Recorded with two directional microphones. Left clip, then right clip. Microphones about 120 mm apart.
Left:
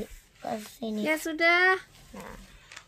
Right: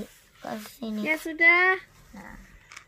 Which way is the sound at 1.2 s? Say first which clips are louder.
Right 3 dB; 35° left (ahead or behind).